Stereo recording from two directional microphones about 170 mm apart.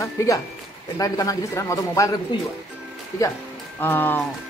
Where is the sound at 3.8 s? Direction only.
10° left (ahead or behind).